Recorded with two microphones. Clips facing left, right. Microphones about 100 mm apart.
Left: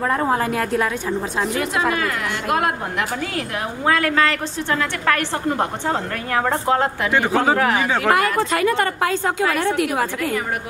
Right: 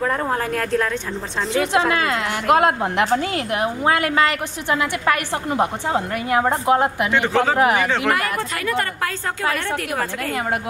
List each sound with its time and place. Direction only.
0.0 s a woman's voice: 5° left (ahead or behind)
1.7 s a woman's voice: 25° right (ahead or behind)
7.1 s a woman's voice: 10° left (ahead or behind)
7.5 s a woman's voice: 15° right (ahead or behind)
8.1 s a woman's voice: 25° left (ahead or behind)